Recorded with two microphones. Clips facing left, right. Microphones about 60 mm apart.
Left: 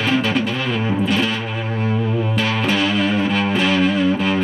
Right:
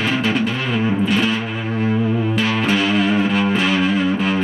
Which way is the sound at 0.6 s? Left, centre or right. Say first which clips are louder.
Right 1 dB; centre.